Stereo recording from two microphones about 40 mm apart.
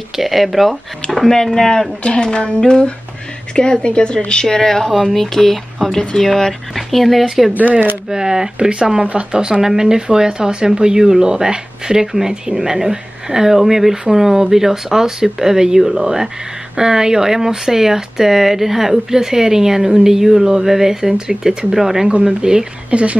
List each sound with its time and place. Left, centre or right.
0.1 s speech: centre
1.3 s speech: centre
1.7 s speech: left; by 7.5 s centre
7.5 s speech: right
8.1 s speech: centre
22.8 s speech: right